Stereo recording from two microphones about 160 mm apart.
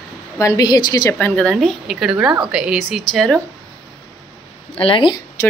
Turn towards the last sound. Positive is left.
turn(degrees=30)  # may be behind; listen again after turning